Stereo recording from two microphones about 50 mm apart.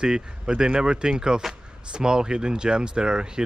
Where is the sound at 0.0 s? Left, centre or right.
Centre.